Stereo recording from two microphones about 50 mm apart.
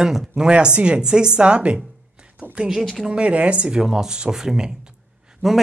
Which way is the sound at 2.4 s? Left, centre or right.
Right.